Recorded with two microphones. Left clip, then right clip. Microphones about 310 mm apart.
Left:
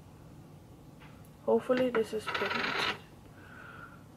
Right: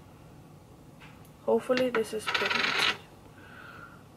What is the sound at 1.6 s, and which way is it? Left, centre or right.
Speech, centre.